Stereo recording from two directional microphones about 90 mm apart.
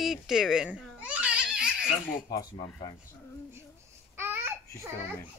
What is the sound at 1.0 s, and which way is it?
Crying, 15° right (ahead or behind).